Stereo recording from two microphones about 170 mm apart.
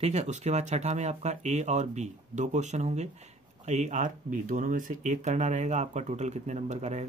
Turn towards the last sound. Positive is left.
turn(degrees=-40)  # may be behind; listen again after turning